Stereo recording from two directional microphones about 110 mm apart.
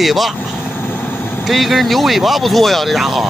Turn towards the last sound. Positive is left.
turn(degrees=0)  # may be behind; listen again after turning